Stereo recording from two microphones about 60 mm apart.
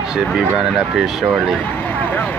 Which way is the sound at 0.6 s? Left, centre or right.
Centre.